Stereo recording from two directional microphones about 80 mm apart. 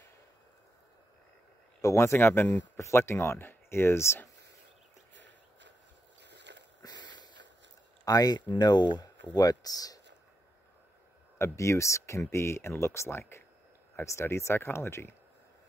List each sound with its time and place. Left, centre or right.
1.8 s speech: left
2.1 s speech: left
6.8 s a sound: left
8.0 s speech: left
9.4 s speech: left
11.3 s speech: left